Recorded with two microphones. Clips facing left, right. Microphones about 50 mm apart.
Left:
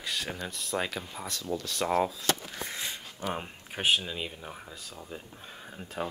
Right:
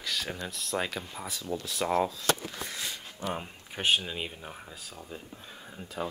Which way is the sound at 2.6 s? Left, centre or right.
Left.